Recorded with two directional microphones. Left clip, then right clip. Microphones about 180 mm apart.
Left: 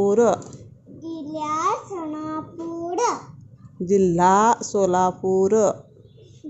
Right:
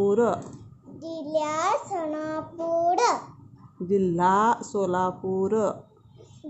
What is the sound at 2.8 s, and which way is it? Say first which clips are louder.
Babbling: even; 15° right (ahead or behind).